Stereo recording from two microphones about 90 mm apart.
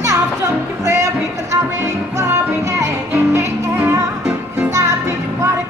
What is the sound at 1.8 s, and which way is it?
Music, 35° right (ahead or behind).